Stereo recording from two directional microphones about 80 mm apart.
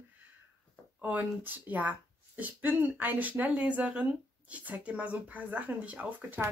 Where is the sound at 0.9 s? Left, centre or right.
Centre.